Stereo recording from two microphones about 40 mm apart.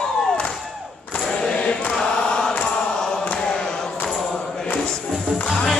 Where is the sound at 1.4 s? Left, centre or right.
Left.